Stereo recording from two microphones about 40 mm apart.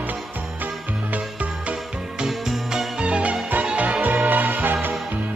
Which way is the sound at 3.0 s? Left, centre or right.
Right.